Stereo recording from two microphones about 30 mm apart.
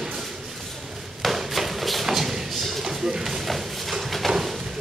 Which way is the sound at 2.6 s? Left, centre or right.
Centre.